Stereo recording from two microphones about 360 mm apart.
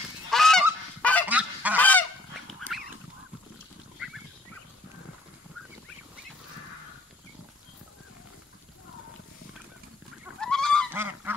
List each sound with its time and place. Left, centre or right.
0.3 s goose: centre
10.2 s goose: centre